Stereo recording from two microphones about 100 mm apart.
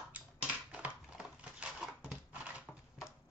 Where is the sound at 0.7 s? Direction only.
15° right (ahead or behind).